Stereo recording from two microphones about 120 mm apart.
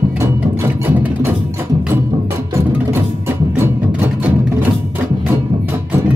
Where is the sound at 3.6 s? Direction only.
15° right (ahead or behind).